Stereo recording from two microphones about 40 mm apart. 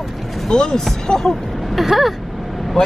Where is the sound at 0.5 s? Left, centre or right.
Centre.